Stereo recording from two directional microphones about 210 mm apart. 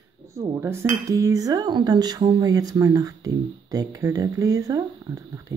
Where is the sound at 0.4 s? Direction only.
15° right (ahead or behind).